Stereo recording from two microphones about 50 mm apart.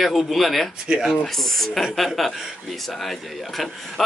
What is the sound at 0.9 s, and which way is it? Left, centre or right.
Speech, centre.